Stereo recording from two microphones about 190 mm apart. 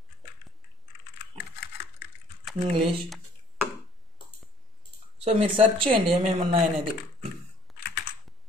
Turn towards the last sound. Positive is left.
turn(degrees=0)  # may be behind; listen again after turning